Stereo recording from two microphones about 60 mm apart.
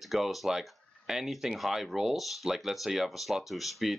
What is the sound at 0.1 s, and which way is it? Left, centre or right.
Speech, centre.